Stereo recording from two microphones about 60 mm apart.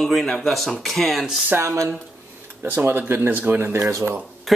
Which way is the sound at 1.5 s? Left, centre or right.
Right.